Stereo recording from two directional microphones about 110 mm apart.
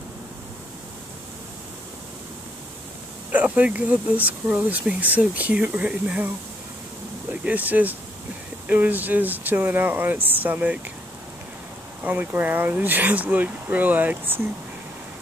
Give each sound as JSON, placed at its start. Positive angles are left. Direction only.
{"t": 3.3, "sound": "speech", "side_deg": -15}
{"t": 7.4, "sound": "speech", "side_deg": -15}
{"t": 12.0, "sound": "speech", "side_deg": -15}